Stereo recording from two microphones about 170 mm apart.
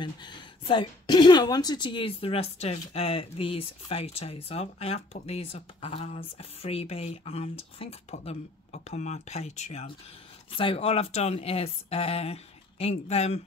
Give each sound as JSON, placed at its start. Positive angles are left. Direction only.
{"t": 0.0, "sound": "speech", "side_deg": 25}